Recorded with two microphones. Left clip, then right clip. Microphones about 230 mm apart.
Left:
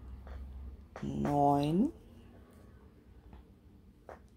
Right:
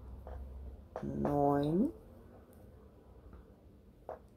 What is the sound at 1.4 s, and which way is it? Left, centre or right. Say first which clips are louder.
Speech: left 3 dB; left.